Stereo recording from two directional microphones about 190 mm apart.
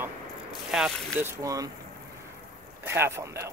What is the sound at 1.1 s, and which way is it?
Speech, 15° right (ahead or behind).